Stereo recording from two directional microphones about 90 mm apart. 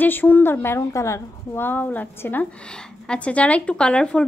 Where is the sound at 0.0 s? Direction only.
20° left (ahead or behind).